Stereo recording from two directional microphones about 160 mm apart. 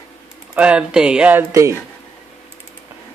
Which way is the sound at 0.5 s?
5° right (ahead or behind).